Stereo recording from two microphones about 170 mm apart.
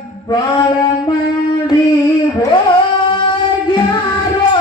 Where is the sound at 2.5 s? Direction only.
30° left (ahead or behind).